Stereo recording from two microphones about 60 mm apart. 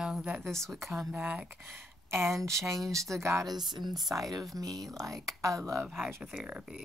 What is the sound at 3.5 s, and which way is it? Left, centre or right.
Speech, centre.